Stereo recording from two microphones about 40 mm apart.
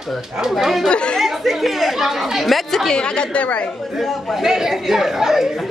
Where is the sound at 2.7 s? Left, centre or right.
Centre.